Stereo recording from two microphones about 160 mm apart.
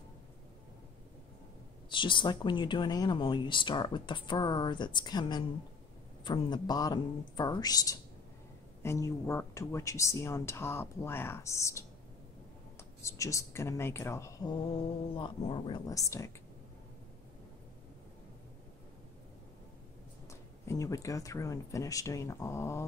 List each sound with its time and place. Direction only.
1.9 s speech: 30° left (ahead or behind)
15.9 s speech: 20° left (ahead or behind)
20.2 s speech: 20° left (ahead or behind)